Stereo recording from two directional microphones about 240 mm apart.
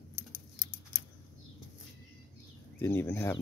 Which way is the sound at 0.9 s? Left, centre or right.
Left.